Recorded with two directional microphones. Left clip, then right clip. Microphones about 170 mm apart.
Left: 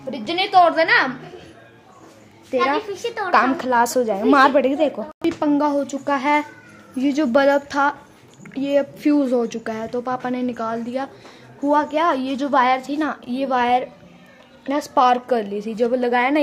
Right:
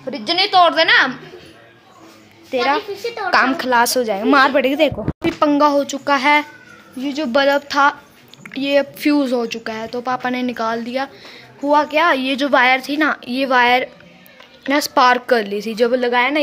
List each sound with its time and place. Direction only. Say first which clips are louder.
0.1 s a woman's voice: right 5 dB; 25° right (ahead or behind)
0.5 s a woman's voice: right 1 dB; 5° right (ahead or behind)
2.5 s speech: right 2 dB; 5° left (ahead or behind)
7.3 s a woman's voice: right 3 dB; 15° left (ahead or behind)